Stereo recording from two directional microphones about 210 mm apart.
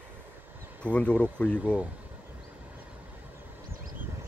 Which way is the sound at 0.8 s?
5° left (ahead or behind).